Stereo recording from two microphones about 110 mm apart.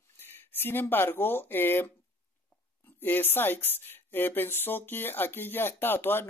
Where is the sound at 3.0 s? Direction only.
15° left (ahead or behind).